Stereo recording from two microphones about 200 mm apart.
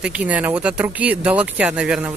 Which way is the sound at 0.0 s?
5° right (ahead or behind).